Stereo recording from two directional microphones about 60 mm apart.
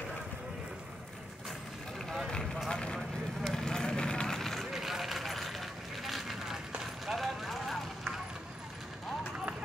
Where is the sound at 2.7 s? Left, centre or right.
Centre.